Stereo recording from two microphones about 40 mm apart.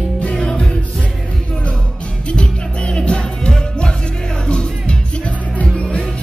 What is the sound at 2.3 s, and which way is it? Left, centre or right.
Music, left.